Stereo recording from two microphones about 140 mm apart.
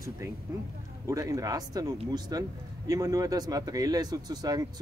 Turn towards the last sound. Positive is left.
turn(degrees=-30)  # may be behind; listen again after turning